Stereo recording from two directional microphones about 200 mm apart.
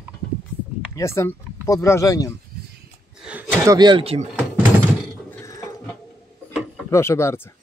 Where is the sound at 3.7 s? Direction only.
25° right (ahead or behind).